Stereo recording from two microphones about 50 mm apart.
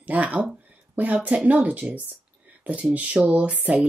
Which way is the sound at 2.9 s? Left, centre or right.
Right.